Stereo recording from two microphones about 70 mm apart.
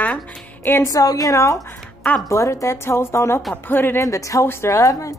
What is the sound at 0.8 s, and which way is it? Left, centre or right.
A woman's voice, left.